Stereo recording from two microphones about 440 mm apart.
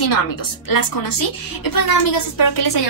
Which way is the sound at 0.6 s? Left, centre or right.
Left.